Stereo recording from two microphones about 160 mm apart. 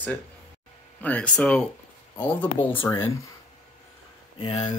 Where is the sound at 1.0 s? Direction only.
10° left (ahead or behind).